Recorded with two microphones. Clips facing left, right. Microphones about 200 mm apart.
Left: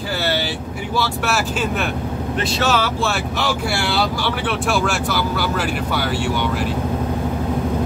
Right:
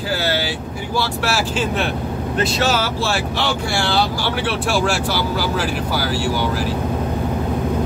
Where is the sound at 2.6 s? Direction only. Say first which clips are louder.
Left 4 dB; 35° right (ahead or behind).